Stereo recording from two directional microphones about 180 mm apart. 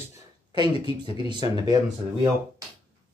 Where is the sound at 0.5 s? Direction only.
25° right (ahead or behind).